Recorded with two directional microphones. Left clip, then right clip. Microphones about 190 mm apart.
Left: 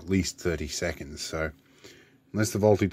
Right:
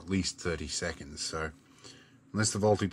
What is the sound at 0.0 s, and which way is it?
Speech, 30° left (ahead or behind).